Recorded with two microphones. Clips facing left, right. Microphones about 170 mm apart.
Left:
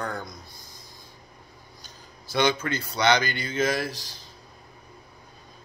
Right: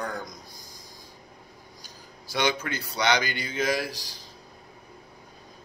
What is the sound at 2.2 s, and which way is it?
Speech, 10° right (ahead or behind).